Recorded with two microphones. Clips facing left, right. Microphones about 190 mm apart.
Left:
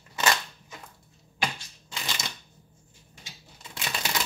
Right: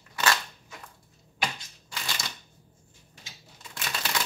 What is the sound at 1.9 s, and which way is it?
Shuffling cards, 20° left (ahead or behind).